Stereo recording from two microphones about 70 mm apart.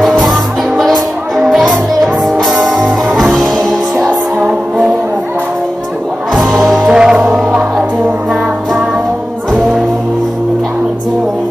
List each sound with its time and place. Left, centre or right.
0.2 s music: centre
4.5 s music: centre
6.9 s music: centre